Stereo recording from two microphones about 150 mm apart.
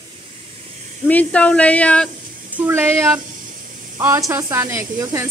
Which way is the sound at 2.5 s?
15° right (ahead or behind).